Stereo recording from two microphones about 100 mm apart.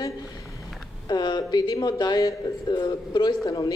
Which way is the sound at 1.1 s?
45° left (ahead or behind).